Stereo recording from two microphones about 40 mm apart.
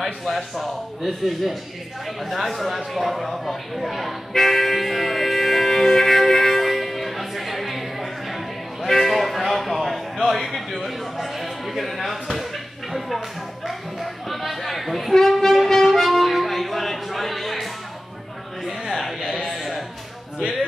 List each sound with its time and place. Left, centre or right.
0.0 s speech: centre
2.0 s a sound: centre
8.8 s music: centre
10.7 s speech: centre
13.7 s music: centre
18.6 s a sound: centre